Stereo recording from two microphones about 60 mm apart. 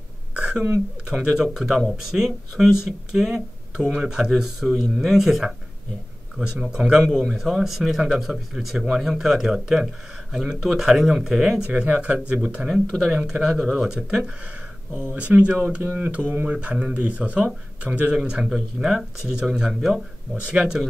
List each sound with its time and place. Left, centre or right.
0.4 s speech: centre
11.6 s speech: right
12.6 s speech: centre
13.3 s speech: centre
15.1 s speech: right
15.8 s mantra: right
16.4 s speech: centre
18.2 s speech: centre